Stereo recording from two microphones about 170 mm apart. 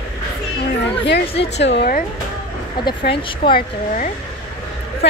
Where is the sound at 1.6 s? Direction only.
85° left.